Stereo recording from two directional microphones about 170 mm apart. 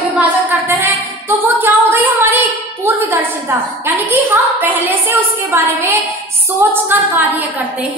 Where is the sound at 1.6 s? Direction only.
10° right (ahead or behind).